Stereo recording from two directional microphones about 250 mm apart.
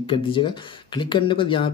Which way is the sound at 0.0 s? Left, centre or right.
Left.